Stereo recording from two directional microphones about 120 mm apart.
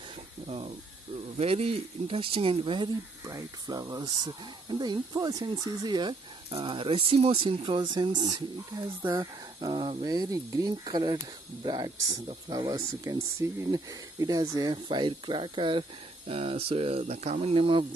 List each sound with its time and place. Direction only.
0.5 s speech: 55° right (ahead or behind)
3.3 s speech: 30° right (ahead or behind)
12.7 s speech: 25° right (ahead or behind); by 17.8 s 45° right (ahead or behind)